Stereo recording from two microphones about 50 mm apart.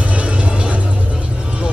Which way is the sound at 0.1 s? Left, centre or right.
Right.